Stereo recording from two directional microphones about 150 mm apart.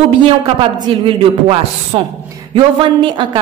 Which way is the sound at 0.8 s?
35° right (ahead or behind).